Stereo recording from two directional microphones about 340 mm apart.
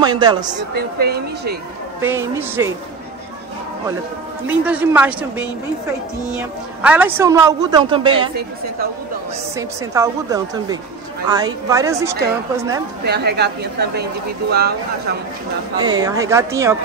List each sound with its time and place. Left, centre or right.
0.0 s a woman's voice: centre
0.7 s a woman's voice: right
2.0 s a woman's voice: centre
4.5 s a woman's voice: centre
6.8 s a woman's voice: centre
9.6 s a woman's voice: centre
13.0 s a woman's voice: right
15.8 s a woman's voice: centre